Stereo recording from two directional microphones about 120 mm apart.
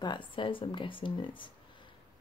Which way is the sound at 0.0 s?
40° left (ahead or behind).